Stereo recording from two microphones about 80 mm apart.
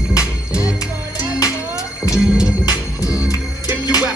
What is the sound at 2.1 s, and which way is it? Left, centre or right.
Music, centre.